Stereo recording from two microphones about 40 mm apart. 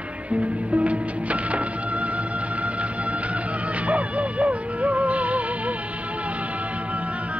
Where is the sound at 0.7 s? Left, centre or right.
Right.